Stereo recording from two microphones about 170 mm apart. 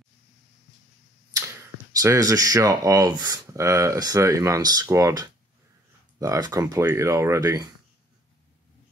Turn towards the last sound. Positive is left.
turn(degrees=-20)  # may be behind; listen again after turning